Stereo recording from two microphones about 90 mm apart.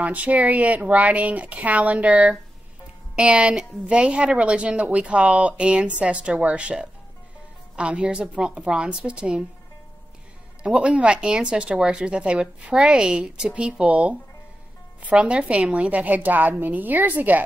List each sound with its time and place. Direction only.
0.0 s a woman's voice: 15° right (ahead or behind)
10.6 s a woman's voice: 10° right (ahead or behind)